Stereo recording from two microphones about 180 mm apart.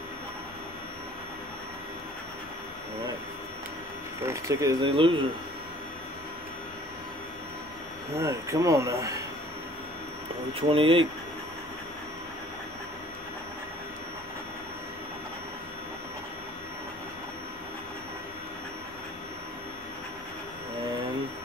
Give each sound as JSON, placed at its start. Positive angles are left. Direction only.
{"t": 4.3, "sound": "speech", "side_deg": -15}
{"t": 4.8, "sound": "speech", "side_deg": -30}
{"t": 8.2, "sound": "speech", "side_deg": -15}
{"t": 10.7, "sound": "speech", "side_deg": -30}